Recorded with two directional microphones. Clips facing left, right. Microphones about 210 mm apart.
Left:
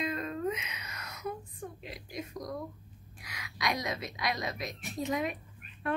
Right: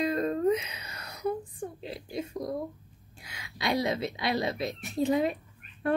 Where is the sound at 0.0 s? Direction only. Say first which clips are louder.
Right 7 dB; 35° right (ahead or behind).